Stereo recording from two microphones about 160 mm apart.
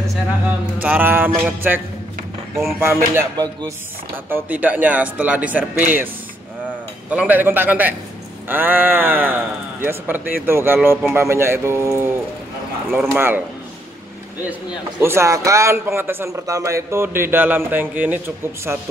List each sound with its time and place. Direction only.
0.7 s a man's voice: 10° right (ahead or behind)
2.8 s a man's voice: 15° right (ahead or behind)
7.1 s a man's voice: 10° right (ahead or behind)
15.0 s a man's voice: 15° right (ahead or behind)